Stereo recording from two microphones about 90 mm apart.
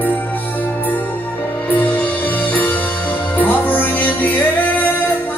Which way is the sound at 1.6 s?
20° left (ahead or behind).